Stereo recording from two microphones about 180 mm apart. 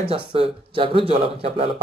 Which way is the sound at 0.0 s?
30° right (ahead or behind).